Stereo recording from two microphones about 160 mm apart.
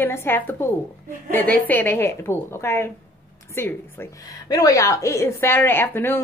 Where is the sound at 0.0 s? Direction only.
15° left (ahead or behind).